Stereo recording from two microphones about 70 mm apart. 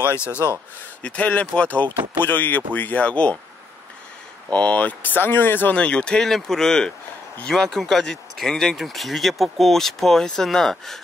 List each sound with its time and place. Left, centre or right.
0.2 s speech: right
1.0 s speech: centre
4.5 s speech: centre
5.8 s speech: centre